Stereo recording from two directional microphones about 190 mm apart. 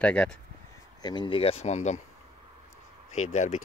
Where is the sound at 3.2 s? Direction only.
40° left (ahead or behind).